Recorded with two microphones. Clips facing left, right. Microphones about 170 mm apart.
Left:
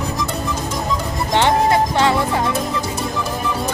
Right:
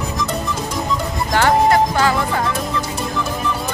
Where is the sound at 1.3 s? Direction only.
25° left (ahead or behind).